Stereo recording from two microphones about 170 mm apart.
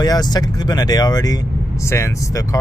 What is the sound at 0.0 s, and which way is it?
Speech, 25° left (ahead or behind).